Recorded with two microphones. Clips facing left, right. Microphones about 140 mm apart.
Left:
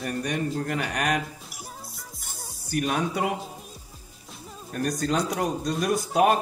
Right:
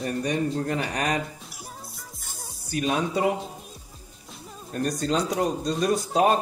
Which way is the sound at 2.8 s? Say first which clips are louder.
Right 1 dB; 25° right (ahead or behind).